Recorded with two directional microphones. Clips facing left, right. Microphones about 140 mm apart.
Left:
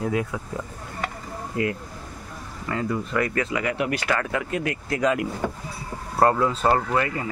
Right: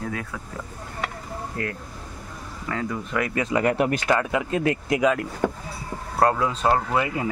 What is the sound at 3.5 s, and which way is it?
Speech, 45° right (ahead or behind).